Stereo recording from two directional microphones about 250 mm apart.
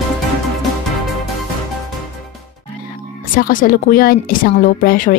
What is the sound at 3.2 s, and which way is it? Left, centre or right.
Speech, left.